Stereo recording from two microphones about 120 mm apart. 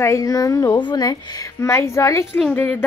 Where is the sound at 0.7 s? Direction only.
35° left (ahead or behind).